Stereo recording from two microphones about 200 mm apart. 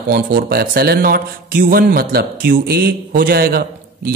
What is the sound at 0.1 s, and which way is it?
Speech, 45° right (ahead or behind).